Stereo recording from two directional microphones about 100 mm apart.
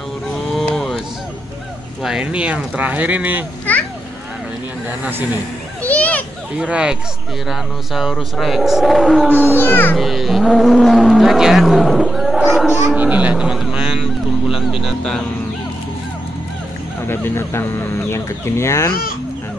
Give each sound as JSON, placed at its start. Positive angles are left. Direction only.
{"t": 0.3, "sound": "a sound", "side_deg": 5}
{"t": 2.0, "sound": "speech", "side_deg": -10}
{"t": 3.7, "sound": "children playing", "side_deg": 15}
{"t": 5.8, "sound": "children playing", "side_deg": 15}
{"t": 6.6, "sound": "speech", "side_deg": -10}
{"t": 9.3, "sound": "speech", "side_deg": 20}
{"t": 9.9, "sound": "speech", "side_deg": 0}
{"t": 12.9, "sound": "speech", "side_deg": -15}
{"t": 17.1, "sound": "speech", "side_deg": 25}